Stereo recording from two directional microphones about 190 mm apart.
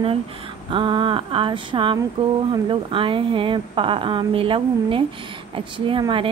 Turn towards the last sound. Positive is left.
turn(degrees=-25)  # may be behind; listen again after turning